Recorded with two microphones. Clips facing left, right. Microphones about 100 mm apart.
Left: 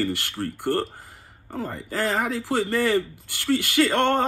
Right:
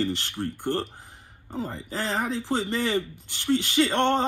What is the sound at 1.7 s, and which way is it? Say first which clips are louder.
Speech: left 5 dB; 55° left (ahead or behind).